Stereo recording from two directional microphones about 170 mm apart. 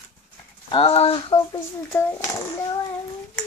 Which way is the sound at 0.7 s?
35° left (ahead or behind).